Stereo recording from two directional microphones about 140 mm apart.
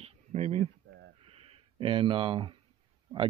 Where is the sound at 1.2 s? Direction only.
45° right (ahead or behind).